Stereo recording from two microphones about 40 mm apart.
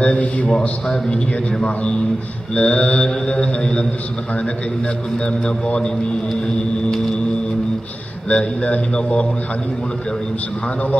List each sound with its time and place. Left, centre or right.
0.0 s a man's voice: left
0.5 s mantra: centre
2.5 s mantra: left
5.1 s mantra: left
6.4 s a sound: centre
8.3 s mantra: left